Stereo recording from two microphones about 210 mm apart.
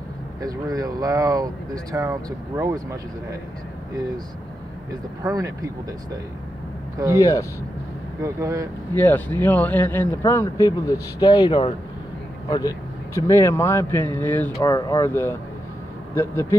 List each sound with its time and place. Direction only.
0.4 s speech: 15° right (ahead or behind)
5.2 s speech: 15° right (ahead or behind)
7.0 s speech: 15° right (ahead or behind)
8.9 s speech: 10° left (ahead or behind)